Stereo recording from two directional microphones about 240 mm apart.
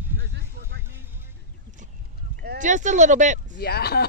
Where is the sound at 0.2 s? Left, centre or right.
Right.